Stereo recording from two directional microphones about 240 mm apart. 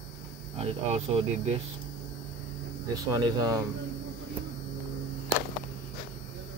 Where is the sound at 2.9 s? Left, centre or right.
Centre.